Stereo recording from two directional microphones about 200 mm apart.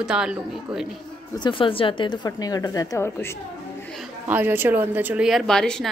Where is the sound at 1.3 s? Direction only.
25° left (ahead or behind).